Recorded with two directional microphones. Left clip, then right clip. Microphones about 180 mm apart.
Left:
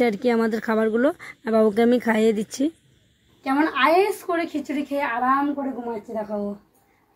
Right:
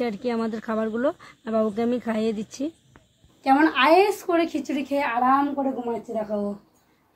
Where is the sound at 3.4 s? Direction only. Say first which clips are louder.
Right 2 dB; centre (ahead or behind).